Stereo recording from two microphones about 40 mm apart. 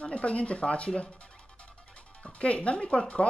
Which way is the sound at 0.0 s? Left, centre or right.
Left.